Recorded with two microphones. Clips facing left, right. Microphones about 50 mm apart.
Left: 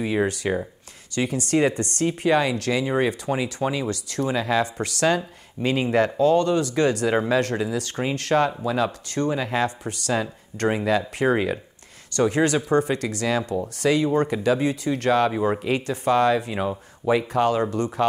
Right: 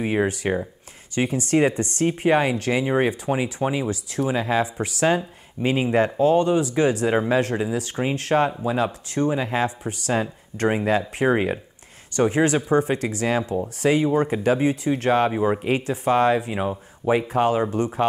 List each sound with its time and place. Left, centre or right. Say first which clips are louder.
0.3 s speech: right 1 dB; right
13.5 s speech: right 1 dB; right
14.0 s speech: right 1 dB; centre
14.3 s speech: right 1 dB; right